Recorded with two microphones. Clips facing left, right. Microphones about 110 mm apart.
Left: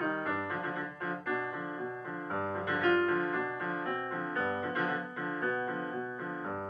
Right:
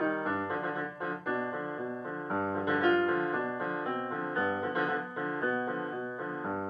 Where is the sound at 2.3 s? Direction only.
20° right (ahead or behind).